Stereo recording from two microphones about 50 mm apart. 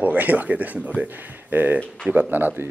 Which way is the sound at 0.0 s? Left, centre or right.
Right.